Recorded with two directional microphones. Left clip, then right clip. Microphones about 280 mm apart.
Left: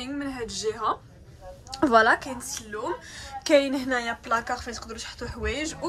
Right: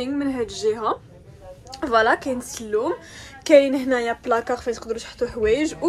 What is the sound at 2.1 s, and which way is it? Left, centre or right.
A woman's voice, centre.